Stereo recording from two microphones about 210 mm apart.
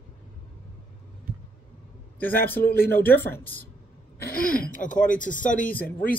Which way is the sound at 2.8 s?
10° left (ahead or behind).